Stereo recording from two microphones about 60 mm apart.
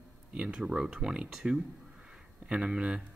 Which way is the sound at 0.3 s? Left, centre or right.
Centre.